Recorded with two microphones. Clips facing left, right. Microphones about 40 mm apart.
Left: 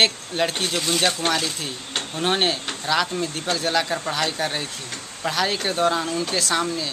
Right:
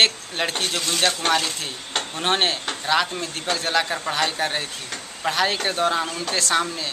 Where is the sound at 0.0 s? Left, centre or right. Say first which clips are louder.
Even; centre.